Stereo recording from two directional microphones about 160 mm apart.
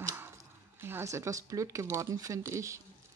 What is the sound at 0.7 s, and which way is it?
Speech, 15° right (ahead or behind).